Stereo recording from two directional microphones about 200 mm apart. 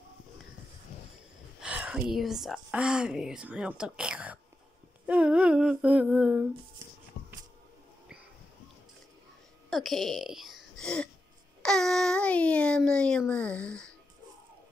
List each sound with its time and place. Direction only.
1.6 s a woman's voice: 5° right (ahead or behind)
5.0 s humming: 5° right (ahead or behind)
7.2 s a sound: 40° left (ahead or behind)
9.7 s a woman's voice: centre (ahead or behind)